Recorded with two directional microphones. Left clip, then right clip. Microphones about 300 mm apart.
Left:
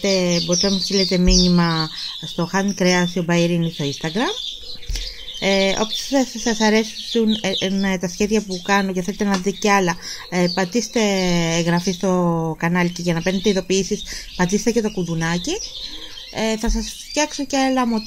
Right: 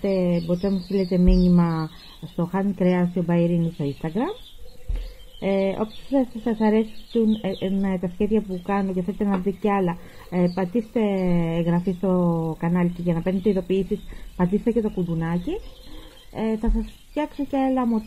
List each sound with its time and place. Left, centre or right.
0.0 s speech: centre
5.4 s speech: centre